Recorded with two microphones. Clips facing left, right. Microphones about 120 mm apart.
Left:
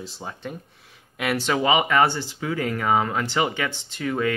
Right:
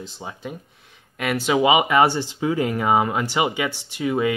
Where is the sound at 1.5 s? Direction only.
15° right (ahead or behind).